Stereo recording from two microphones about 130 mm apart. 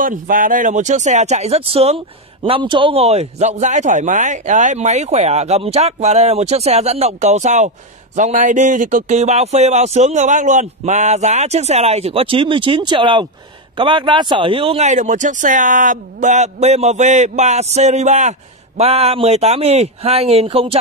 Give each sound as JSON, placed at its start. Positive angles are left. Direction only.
{"t": 0.0, "sound": "speech", "side_deg": -90}
{"t": 14.9, "sound": "a man's voice", "side_deg": -70}
{"t": 18.8, "sound": "speech", "side_deg": -50}